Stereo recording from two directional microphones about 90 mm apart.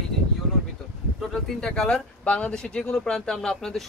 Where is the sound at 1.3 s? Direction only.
5° left (ahead or behind).